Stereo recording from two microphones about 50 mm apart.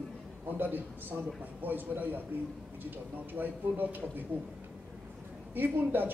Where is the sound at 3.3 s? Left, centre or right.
Right.